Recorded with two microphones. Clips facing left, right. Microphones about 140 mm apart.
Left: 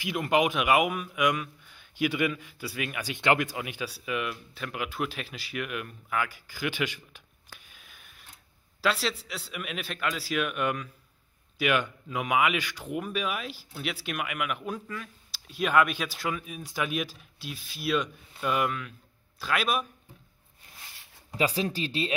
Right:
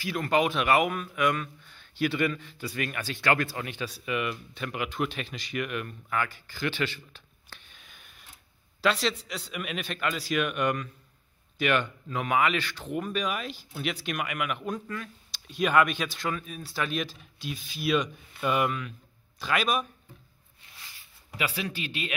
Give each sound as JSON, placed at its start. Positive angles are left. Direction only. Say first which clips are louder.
{"t": 0.0, "sound": "speech", "louder": "even", "side_deg": 15}
{"t": 21.4, "sound": "speech", "louder": "left 5 dB", "side_deg": 35}